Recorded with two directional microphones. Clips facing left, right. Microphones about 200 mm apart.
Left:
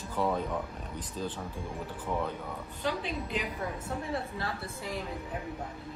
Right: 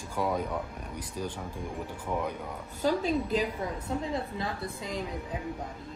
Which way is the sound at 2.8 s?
40° right (ahead or behind).